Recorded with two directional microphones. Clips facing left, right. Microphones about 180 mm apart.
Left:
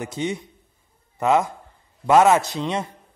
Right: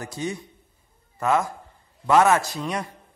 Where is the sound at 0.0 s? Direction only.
20° left (ahead or behind).